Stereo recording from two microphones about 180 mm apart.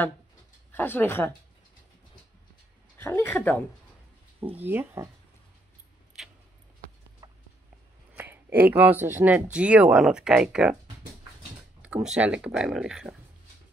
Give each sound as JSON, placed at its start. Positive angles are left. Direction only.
{"t": 0.7, "sound": "speech", "side_deg": 10}
{"t": 3.0, "sound": "speech", "side_deg": 10}
{"t": 4.4, "sound": "speech", "side_deg": -10}
{"t": 6.2, "sound": "a sound", "side_deg": 0}
{"t": 7.2, "sound": "a sound", "side_deg": -20}
{"t": 8.2, "sound": "speech", "side_deg": -10}
{"t": 11.8, "sound": "speech", "side_deg": -5}